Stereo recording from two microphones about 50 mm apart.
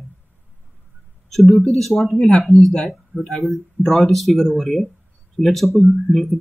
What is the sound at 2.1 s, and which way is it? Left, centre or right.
Speech, centre.